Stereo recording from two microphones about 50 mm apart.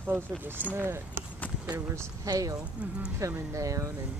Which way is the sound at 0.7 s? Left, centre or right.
Right.